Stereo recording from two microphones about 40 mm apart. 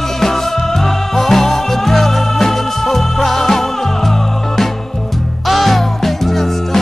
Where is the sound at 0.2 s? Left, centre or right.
Centre.